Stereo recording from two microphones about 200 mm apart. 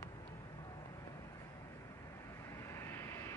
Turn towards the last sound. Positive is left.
turn(degrees=10)  # may be behind; listen again after turning